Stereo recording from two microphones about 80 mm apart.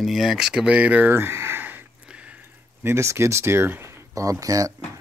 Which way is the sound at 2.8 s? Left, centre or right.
Right.